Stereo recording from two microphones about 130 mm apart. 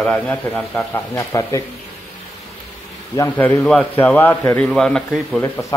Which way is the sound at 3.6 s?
10° left (ahead or behind).